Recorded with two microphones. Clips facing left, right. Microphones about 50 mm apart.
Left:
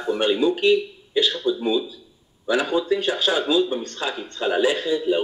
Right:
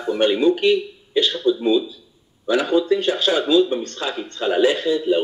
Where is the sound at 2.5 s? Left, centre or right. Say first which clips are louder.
Right 3 dB; left.